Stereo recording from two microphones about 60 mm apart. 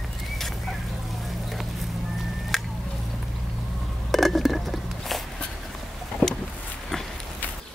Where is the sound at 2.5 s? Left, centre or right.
Centre.